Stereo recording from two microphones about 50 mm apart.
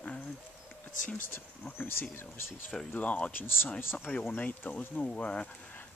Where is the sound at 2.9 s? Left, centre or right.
Left.